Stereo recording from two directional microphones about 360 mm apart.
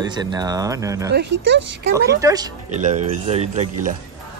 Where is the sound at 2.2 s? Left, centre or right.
Centre.